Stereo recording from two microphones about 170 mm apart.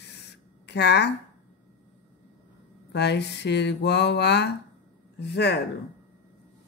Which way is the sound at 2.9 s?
80° left.